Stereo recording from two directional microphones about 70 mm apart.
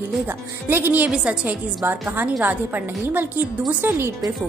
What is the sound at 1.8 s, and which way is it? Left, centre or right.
A woman's voice, right.